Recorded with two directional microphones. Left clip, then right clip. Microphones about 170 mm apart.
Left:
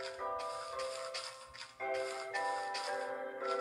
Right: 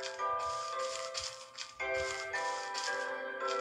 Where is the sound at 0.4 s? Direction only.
15° left (ahead or behind).